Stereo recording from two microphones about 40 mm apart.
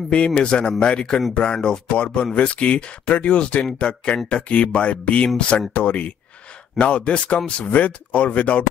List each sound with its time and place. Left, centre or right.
0.4 s speech: left